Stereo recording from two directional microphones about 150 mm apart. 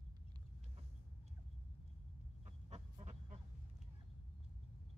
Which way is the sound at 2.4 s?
45° right (ahead or behind).